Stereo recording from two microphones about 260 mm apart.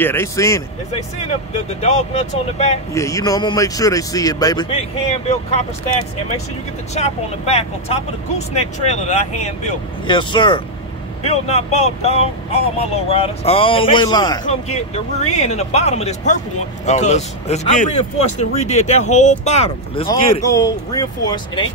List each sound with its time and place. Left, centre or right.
0.0 s a man's voice: centre
1.8 s speech: left
2.9 s a man's voice: centre
6.9 s speech: left
14.4 s a man's voice: left